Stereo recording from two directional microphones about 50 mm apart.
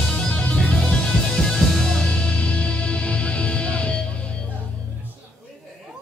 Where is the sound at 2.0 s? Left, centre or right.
Centre.